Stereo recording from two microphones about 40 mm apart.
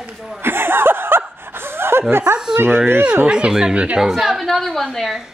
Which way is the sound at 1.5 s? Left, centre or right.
Right.